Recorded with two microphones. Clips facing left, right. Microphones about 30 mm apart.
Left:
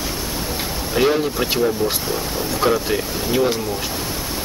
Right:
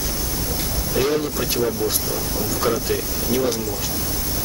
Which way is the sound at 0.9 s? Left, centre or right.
Left.